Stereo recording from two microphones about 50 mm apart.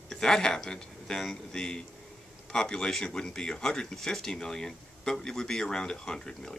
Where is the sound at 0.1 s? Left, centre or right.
Centre.